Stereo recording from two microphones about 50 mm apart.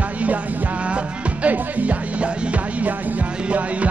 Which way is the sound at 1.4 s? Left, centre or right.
Right.